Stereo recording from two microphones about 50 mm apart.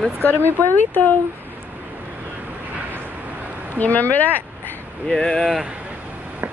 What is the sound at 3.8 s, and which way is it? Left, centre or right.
Speech, left.